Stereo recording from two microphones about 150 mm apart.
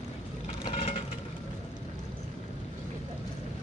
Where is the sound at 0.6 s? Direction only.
40° left (ahead or behind).